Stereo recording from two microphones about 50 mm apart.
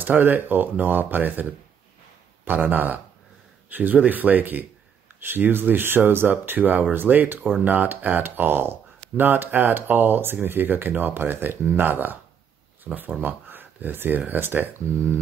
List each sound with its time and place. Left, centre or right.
0.0 s speech: right